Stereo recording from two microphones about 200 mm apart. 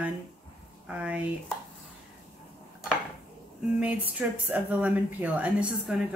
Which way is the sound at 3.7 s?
10° right (ahead or behind).